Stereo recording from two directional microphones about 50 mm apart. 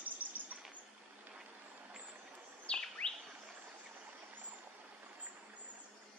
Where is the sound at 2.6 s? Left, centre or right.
Centre.